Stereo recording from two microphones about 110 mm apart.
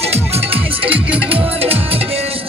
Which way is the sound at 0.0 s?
70° right (ahead or behind).